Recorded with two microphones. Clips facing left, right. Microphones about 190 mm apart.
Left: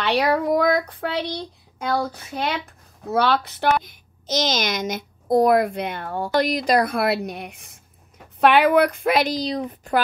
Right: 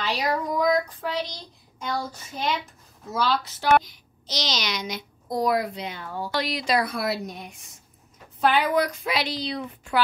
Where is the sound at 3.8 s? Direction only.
50° left (ahead or behind).